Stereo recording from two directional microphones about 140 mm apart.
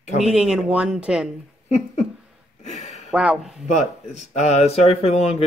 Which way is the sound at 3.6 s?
55° left (ahead or behind).